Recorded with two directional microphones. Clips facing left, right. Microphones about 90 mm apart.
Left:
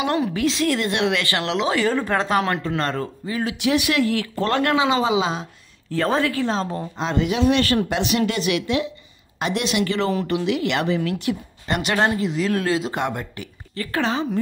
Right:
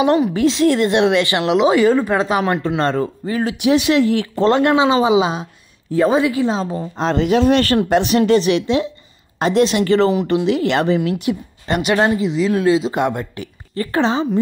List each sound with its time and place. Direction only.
0.3 s speech: 25° right (ahead or behind)
2.8 s speech: 25° right (ahead or behind)
3.3 s speech: 35° right (ahead or behind); by 6.9 s 5° right (ahead or behind)
7.0 s speech: 40° right (ahead or behind)
11.1 s a woman's voice: 20° right (ahead or behind)
12.2 s speech: 5° right (ahead or behind)
12.9 s speech: 20° right (ahead or behind)